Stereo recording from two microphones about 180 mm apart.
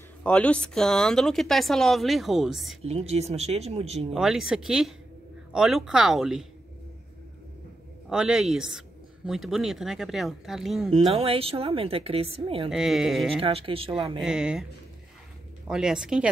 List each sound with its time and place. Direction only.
0.2 s speech: 5° left (ahead or behind)
2.8 s a woman's voice: 35° right (ahead or behind)
4.1 s speech: centre (ahead or behind)
8.1 s speech: centre (ahead or behind)
11.0 s a woman's voice: 35° right (ahead or behind)
12.6 s speech: centre (ahead or behind)
13.4 s a woman's voice: 30° right (ahead or behind)
14.2 s speech: 5° right (ahead or behind)